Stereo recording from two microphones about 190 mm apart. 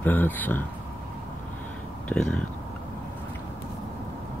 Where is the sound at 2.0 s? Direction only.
5° left (ahead or behind).